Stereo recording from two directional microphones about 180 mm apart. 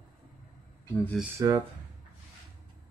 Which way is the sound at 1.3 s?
20° right (ahead or behind).